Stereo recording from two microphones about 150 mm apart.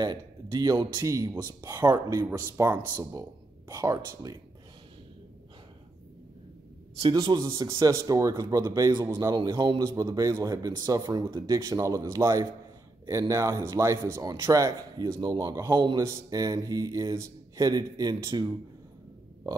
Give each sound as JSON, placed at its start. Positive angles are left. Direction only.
{"t": 0.0, "sound": "speech", "side_deg": -25}
{"t": 7.0, "sound": "speech", "side_deg": -30}